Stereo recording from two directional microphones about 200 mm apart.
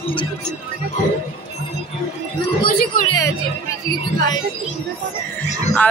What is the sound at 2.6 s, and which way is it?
Speech, 45° left (ahead or behind).